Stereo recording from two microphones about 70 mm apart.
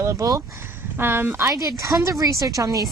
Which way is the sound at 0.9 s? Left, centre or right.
Right.